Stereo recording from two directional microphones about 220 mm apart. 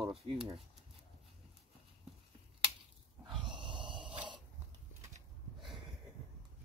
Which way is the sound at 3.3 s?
Centre (ahead or behind).